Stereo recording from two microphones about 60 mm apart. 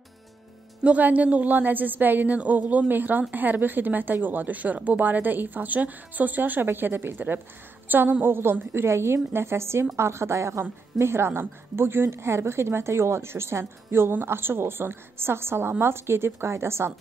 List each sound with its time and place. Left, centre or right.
0.8 s a woman's voice: right